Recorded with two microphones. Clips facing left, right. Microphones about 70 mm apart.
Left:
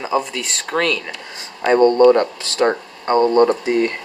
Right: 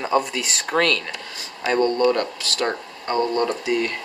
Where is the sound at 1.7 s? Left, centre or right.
Left.